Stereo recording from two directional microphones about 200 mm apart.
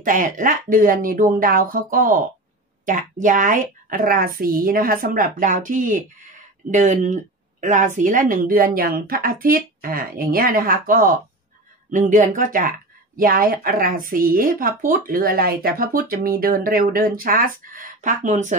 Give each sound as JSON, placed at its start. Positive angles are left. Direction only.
{"t": 0.0, "sound": "speech", "side_deg": -40}